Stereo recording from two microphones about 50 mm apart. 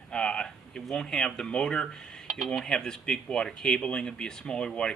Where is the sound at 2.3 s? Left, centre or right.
Centre.